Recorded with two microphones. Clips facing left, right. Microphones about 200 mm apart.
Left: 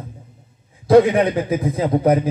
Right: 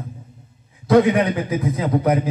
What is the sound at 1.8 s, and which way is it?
Speech, 30° left (ahead or behind).